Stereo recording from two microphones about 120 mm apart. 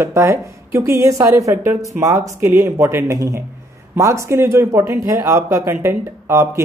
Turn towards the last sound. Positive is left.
turn(degrees=-20)  # may be behind; listen again after turning